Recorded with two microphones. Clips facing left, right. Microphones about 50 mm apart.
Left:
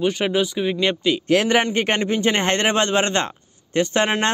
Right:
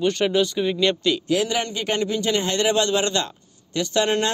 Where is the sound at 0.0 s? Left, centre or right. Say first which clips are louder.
Even; centre.